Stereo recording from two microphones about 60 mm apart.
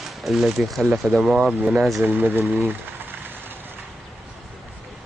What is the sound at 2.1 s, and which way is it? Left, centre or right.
Speech, right.